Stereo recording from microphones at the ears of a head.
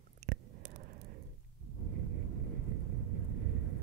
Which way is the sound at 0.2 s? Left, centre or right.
Right.